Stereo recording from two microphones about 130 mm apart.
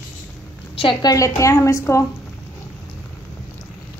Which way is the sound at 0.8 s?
35° left (ahead or behind).